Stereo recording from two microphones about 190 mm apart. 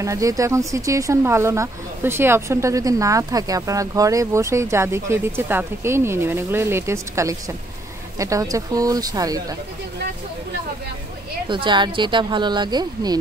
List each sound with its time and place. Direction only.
0.0 s speech: 15° right (ahead or behind)
11.4 s speech: 25° right (ahead or behind)